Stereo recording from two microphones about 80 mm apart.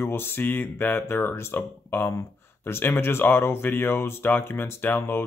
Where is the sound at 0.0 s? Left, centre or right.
Left.